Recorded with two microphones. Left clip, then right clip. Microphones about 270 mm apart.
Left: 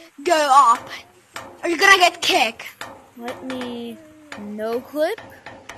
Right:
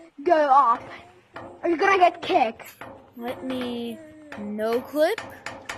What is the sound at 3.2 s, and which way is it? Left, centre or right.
Speech, left.